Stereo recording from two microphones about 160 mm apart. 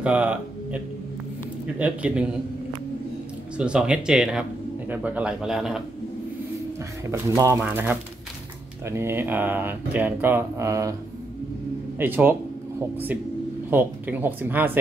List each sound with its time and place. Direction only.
0.0 s speech: 10° right (ahead or behind)
1.8 s speech: 10° right (ahead or behind)
3.5 s speech: 5° right (ahead or behind)
7.1 s speech: 20° right (ahead or behind)
12.0 s speech: 10° right (ahead or behind)
13.7 s speech: 10° right (ahead or behind)